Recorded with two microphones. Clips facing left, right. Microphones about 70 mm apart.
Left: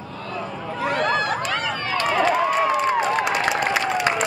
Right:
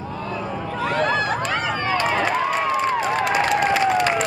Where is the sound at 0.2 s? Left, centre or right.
Centre.